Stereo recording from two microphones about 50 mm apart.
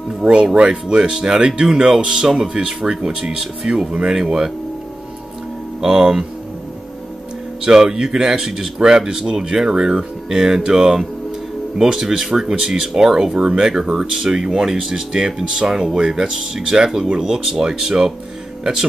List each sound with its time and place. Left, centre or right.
0.2 s speech: centre
5.8 s speech: centre
7.6 s speech: centre